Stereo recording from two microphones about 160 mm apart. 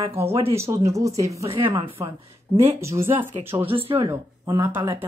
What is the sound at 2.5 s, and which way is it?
Speech, 15° right (ahead or behind).